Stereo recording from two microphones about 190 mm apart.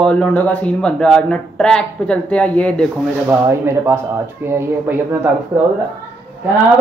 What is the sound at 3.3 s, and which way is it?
Speech, 15° right (ahead or behind).